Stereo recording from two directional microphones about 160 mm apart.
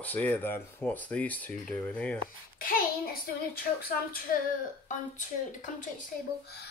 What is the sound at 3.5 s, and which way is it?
Speech, 70° left (ahead or behind).